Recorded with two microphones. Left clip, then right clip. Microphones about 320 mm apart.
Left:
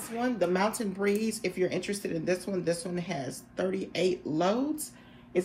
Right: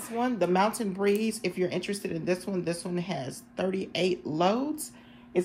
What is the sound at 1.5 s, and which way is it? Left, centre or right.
Speech, centre.